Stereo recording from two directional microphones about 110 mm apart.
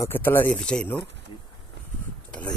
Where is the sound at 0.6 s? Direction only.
10° left (ahead or behind).